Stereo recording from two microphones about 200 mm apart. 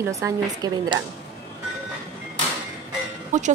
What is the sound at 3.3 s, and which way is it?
Speech, 35° right (ahead or behind).